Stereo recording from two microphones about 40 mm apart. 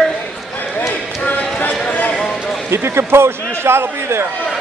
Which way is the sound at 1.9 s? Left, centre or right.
Left.